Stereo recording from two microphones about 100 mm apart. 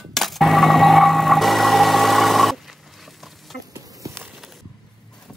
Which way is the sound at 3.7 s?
35° right (ahead or behind).